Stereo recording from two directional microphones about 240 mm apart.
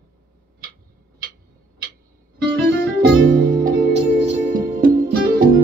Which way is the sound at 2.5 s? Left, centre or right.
Right.